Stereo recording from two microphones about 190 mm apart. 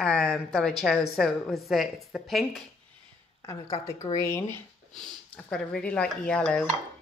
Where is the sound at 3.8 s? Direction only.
15° left (ahead or behind).